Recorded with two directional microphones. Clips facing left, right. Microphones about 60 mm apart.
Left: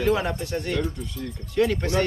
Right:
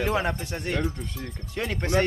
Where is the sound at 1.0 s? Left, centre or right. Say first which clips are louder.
Left 3 dB; right.